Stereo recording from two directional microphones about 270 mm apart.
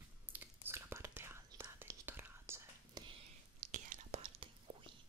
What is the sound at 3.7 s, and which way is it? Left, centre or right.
Whispering, right.